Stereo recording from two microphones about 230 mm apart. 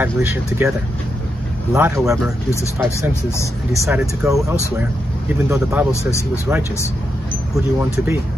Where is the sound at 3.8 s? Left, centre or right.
Centre.